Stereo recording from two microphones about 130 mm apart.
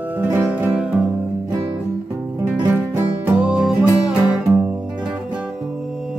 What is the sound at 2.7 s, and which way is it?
Music, 15° right (ahead or behind).